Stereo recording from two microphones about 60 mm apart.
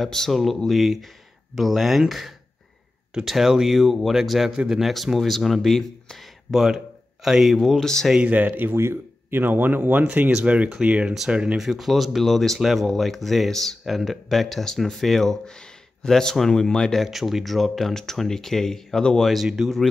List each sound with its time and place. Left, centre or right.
0.0 s speech: centre
8.2 s speech: right
8.7 s speech: right; by 11.6 s centre
11.6 s speech: centre
17.0 s speech: centre